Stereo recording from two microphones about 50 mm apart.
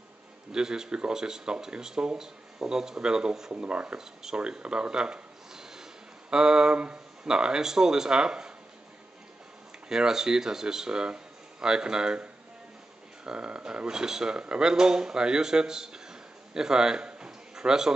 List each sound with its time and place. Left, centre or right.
0.5 s speech: centre
3.5 s speech: right
4.4 s a sound: right
6.3 s speech: centre
9.8 s speech: centre
13.2 s speech: centre